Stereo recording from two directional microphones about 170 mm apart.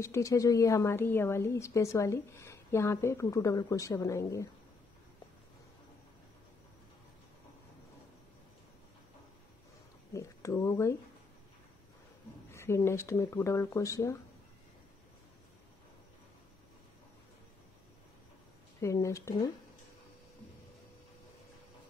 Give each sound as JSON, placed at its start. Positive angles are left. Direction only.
{"t": 0.0, "sound": "a woman's voice", "side_deg": 15}
{"t": 10.1, "sound": "speech", "side_deg": 20}
{"t": 12.4, "sound": "a woman's voice", "side_deg": 15}
{"t": 18.8, "sound": "a woman's voice", "side_deg": 20}